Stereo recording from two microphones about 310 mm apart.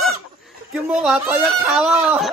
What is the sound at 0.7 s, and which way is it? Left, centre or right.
Speech, centre.